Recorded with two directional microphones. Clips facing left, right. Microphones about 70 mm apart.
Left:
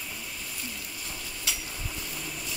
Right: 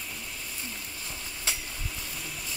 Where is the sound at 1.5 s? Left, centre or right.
Right.